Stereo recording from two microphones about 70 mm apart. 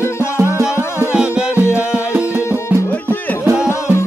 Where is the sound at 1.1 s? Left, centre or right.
Centre.